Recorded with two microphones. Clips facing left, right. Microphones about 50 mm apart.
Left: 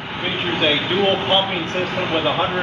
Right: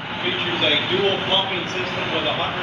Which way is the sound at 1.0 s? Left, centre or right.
Left.